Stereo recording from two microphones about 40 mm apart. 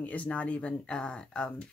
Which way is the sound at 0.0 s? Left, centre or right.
Left.